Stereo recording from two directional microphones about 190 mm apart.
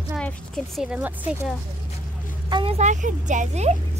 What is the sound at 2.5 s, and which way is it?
Speech, 25° right (ahead or behind).